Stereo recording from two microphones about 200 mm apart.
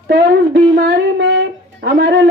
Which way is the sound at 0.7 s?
65° right (ahead or behind).